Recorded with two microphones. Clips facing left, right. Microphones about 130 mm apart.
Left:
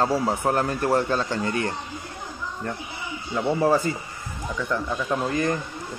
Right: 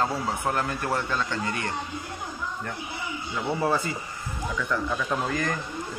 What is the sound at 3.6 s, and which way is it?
Speech, 40° left (ahead or behind).